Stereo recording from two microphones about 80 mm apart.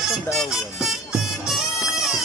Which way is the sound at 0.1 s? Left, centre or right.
Centre.